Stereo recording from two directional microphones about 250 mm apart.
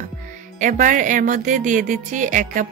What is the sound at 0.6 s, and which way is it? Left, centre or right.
A woman's voice, right.